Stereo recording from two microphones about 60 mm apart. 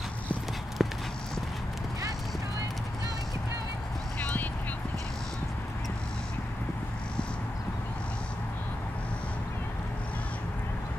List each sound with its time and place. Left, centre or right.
0.8 s clip-clop: centre
4.2 s clip-clop: left